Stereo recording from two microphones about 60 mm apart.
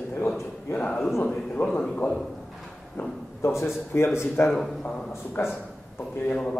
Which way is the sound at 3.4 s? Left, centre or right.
Left.